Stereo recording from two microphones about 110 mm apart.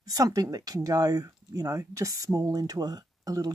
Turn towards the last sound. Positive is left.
turn(degrees=-35)  # may be behind; listen again after turning